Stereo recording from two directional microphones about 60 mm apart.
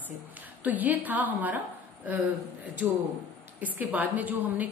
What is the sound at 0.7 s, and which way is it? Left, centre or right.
Speech, right.